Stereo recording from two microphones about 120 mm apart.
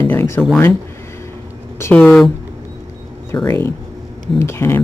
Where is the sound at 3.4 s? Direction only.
20° left (ahead or behind).